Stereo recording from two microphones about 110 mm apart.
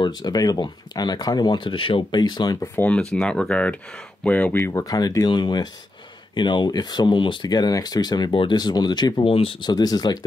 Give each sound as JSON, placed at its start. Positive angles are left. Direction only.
{"t": 0.0, "sound": "speech", "side_deg": 40}
{"t": 2.7, "sound": "speech", "side_deg": 10}
{"t": 4.7, "sound": "speech", "side_deg": 35}
{"t": 9.3, "sound": "speech", "side_deg": 55}